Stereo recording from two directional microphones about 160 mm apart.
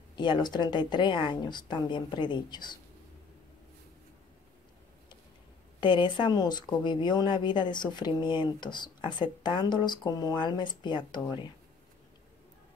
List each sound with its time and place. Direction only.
0.1 s a woman's voice: 30° left (ahead or behind)
5.8 s a woman's voice: 30° left (ahead or behind)